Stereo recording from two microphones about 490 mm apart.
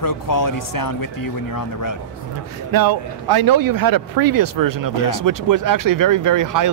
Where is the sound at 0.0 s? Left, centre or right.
Left.